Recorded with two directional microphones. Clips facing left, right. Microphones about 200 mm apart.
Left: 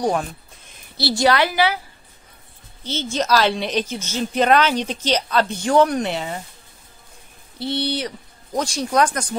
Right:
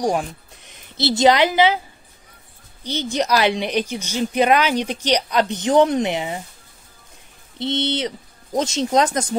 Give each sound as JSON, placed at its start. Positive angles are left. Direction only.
{"t": 0.0, "sound": "a woman's voice", "side_deg": -15}
{"t": 2.8, "sound": "a woman's voice", "side_deg": -15}
{"t": 7.5, "sound": "speech", "side_deg": -20}